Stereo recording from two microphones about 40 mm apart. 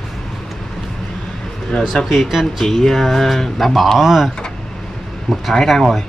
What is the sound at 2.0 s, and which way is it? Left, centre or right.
Speech, left.